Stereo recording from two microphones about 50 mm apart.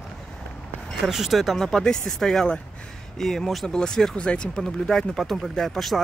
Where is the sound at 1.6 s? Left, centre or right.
Centre.